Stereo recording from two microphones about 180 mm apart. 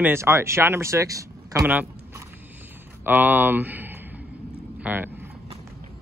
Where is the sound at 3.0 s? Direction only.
10° right (ahead or behind).